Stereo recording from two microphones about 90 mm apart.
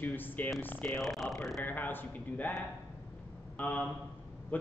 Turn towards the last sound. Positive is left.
turn(degrees=15)  # may be behind; listen again after turning